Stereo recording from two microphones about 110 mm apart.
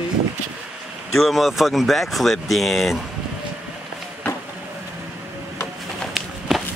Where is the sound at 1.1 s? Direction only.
Centre (ahead or behind).